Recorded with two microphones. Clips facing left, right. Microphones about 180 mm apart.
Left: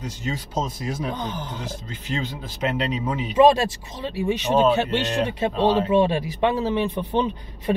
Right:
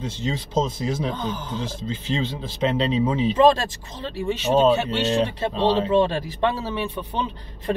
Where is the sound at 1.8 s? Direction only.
30° right (ahead or behind).